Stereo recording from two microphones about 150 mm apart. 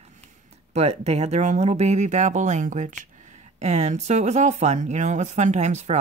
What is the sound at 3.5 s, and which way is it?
Speech, 50° right (ahead or behind).